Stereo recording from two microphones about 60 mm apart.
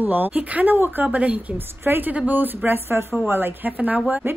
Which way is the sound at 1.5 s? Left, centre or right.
Right.